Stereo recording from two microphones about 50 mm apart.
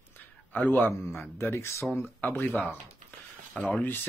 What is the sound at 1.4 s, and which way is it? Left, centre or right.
Speech, left.